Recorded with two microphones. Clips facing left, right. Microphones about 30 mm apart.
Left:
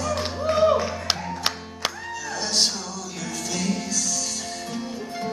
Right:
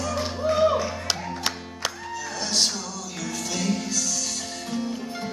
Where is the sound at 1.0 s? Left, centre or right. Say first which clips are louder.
Left 2 dB; centre.